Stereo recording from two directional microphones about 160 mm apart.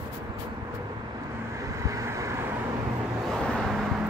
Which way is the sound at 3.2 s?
Centre (ahead or behind).